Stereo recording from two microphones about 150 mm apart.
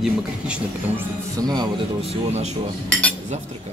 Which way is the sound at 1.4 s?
25° right (ahead or behind).